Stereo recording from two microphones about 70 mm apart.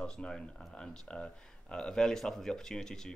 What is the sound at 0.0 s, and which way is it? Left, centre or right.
A man's voice, centre.